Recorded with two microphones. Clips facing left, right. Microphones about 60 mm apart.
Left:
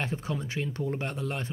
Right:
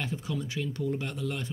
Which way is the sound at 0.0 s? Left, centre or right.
Left.